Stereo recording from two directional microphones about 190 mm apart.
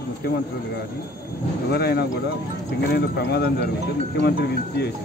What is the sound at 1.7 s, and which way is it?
A man's voice, 55° left (ahead or behind).